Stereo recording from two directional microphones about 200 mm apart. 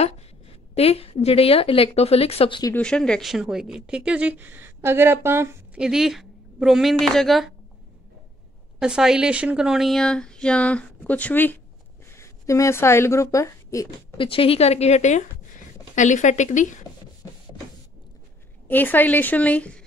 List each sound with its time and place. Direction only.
0.7 s speech: 30° left (ahead or behind)
2.7 s speech: 5° left (ahead or behind)
8.7 s a woman's voice: 5° right (ahead or behind); by 16.8 s 35° left (ahead or behind)
18.7 s a woman's voice: 10° left (ahead or behind)